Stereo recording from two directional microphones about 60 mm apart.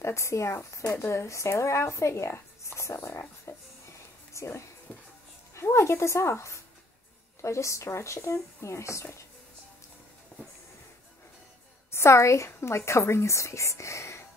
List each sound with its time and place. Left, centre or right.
0.0 s speech: left
3.5 s a sound: left
4.3 s a woman's voice: left
11.9 s a woman's voice: left